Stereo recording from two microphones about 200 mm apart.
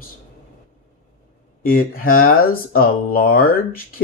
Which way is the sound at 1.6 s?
45° left (ahead or behind).